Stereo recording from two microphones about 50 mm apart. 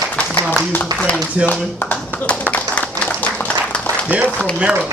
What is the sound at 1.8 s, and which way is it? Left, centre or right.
Clapping, left.